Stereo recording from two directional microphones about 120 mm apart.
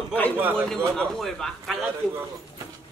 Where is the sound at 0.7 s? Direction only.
5° left (ahead or behind).